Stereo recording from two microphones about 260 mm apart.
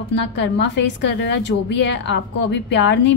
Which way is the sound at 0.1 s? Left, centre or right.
Left.